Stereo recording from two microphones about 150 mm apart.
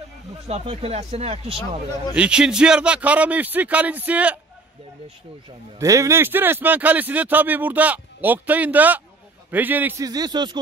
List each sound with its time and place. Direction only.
0.5 s speech: 45° right (ahead or behind)
2.1 s speech: 5° right (ahead or behind)
5.8 s speech: 20° right (ahead or behind)
10.0 s a man's voice: 25° right (ahead or behind)